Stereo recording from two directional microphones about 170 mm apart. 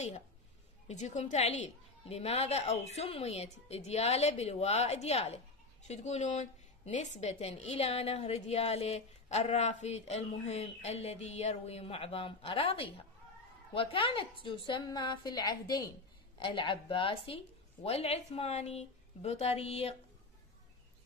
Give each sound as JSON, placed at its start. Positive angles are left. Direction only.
{"t": 0.8, "sound": "a woman's voice", "side_deg": 40}